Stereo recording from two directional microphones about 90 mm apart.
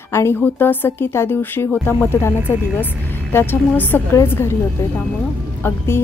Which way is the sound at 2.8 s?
20° left (ahead or behind).